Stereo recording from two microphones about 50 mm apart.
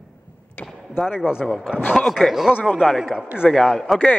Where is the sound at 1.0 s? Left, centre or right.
Centre.